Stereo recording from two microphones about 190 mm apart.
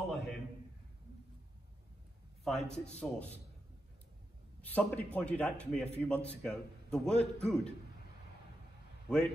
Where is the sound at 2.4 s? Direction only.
5° left (ahead or behind).